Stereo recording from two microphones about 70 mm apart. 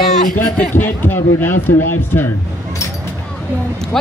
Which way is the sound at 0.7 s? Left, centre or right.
Left.